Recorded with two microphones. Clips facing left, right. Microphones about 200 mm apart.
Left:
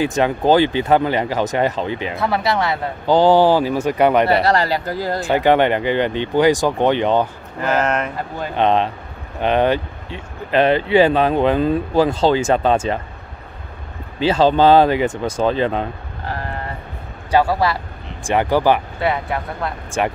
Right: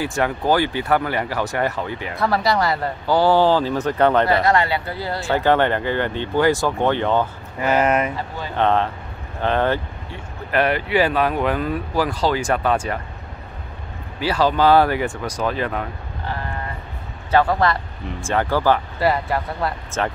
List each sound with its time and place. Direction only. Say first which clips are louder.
0.0 s speech: left 5 dB; 20° left (ahead or behind)
2.1 s speech: right 1 dB; centre (ahead or behind)
3.1 s speech: left 3 dB; 20° left (ahead or behind)
4.3 s speech: left 2 dB; 35° left (ahead or behind)
5.2 s speech: left 3 dB; 15° left (ahead or behind)
7.6 s speech: right 1 dB; 10° right (ahead or behind)
8.5 s speech: left 2 dB; 20° left (ahead or behind)
14.2 s speech: left 4 dB; 25° left (ahead or behind)
17.3 s speech: left 1 dB; 10° left (ahead or behind)
18.9 s speech: right 1 dB; centre (ahead or behind)
19.9 s speech: left 5 dB; 15° left (ahead or behind)